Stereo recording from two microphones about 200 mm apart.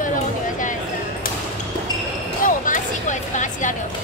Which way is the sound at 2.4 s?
40° left (ahead or behind).